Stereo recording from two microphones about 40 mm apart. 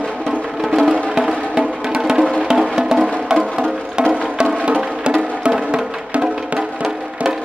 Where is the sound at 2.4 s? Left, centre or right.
Centre.